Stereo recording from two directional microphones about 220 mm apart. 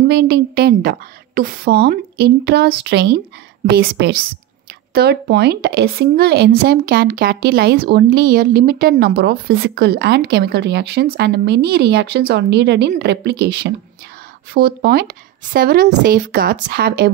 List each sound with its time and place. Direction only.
0.1 s a woman's voice: 45° right (ahead or behind)